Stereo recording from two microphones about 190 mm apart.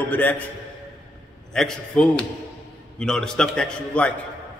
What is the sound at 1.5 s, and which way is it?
A man's voice, 5° left (ahead or behind).